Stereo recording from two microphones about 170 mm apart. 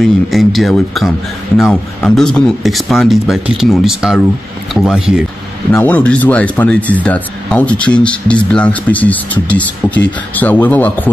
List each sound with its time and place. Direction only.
0.0 s a man's voice: centre (ahead or behind)
5.7 s speech: 10° left (ahead or behind)